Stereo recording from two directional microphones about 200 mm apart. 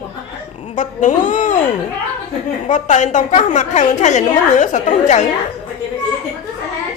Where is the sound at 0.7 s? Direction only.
40° left (ahead or behind).